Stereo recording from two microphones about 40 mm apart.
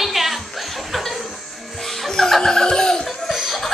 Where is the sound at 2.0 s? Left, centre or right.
Centre.